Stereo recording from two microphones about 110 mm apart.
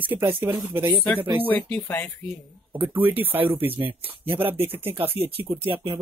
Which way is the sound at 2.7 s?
15° right (ahead or behind).